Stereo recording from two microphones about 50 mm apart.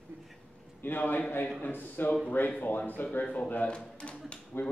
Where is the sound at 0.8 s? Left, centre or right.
Left.